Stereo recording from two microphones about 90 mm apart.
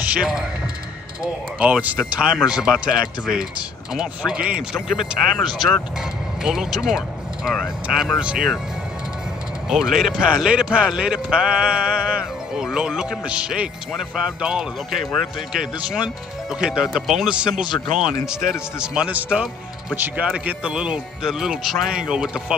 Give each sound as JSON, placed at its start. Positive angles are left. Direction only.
{"t": 0.0, "sound": "speech", "side_deg": -10}
{"t": 1.6, "sound": "a man's voice", "side_deg": -15}
{"t": 9.7, "sound": "a man's voice", "side_deg": -5}
{"t": 17.6, "sound": "speech", "side_deg": 60}
{"t": 18.2, "sound": "a man's voice", "side_deg": -5}